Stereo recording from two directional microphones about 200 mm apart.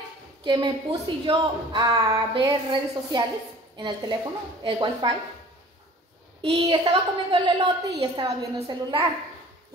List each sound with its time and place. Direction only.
0.5 s a woman's voice: 25° right (ahead or behind)
6.6 s a woman's voice: 25° right (ahead or behind)